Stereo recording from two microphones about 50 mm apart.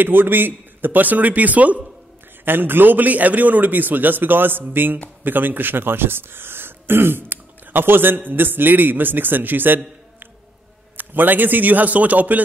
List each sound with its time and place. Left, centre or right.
0.0 s a man's voice: right
2.4 s a man's voice: right
11.0 s a man's voice: right